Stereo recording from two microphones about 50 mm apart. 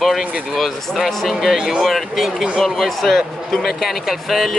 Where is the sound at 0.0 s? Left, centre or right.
Centre.